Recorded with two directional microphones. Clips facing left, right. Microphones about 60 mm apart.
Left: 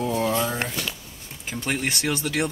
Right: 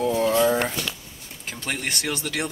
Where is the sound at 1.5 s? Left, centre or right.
Centre.